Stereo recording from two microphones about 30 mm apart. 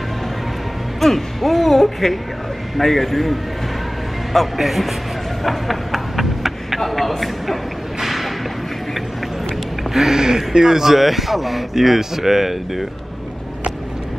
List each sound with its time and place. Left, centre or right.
1.0 s a man's voice: centre
5.4 s a sound: centre
6.8 s a man's voice: centre
8.0 s a sound: centre
9.9 s speech: centre
11.0 s speech: centre